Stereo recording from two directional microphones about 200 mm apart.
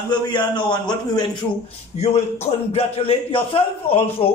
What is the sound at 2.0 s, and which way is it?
A man's voice, 30° left (ahead or behind).